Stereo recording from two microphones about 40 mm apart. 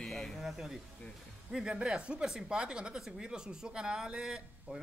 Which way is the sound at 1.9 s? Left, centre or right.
Right.